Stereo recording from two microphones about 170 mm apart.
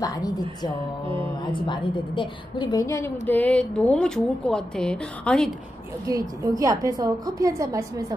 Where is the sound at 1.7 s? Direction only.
30° left (ahead or behind); by 5.5 s 5° left (ahead or behind).